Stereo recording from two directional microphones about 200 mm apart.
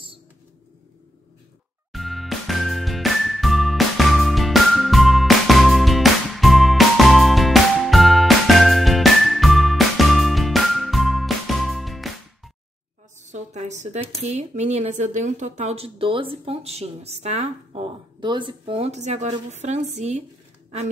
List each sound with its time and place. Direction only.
1.9 s music: centre (ahead or behind)
13.2 s a sound: 35° right (ahead or behind)
14.2 s speech: 35° right (ahead or behind)